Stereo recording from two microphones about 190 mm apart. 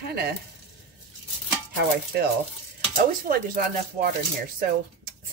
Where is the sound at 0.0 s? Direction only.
55° right (ahead or behind).